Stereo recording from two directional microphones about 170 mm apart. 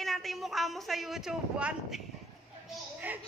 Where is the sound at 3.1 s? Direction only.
10° right (ahead or behind).